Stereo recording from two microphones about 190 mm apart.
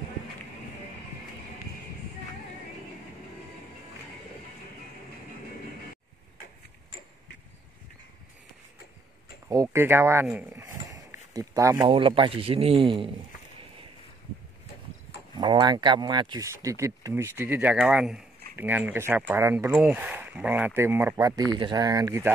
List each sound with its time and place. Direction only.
9.5 s speech: 15° right (ahead or behind)
11.9 s a man's voice: 25° right (ahead or behind)
15.3 s speech: 25° right (ahead or behind)